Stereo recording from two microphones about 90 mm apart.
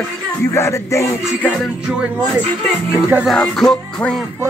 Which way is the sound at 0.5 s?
30° left (ahead or behind).